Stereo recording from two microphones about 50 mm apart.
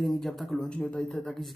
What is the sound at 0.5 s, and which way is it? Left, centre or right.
Speech, left.